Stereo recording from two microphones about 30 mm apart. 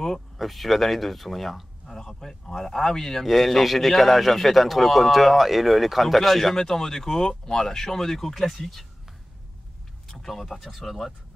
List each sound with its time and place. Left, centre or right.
0.4 s a man's voice: centre
1.9 s speech: centre
3.3 s a man's voice: centre
10.0 s speech: centre